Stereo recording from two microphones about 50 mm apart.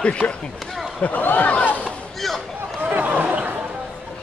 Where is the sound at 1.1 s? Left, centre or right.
Left.